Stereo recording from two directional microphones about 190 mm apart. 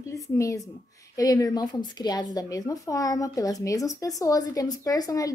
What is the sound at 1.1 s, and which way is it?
A woman's voice, 20° left (ahead or behind).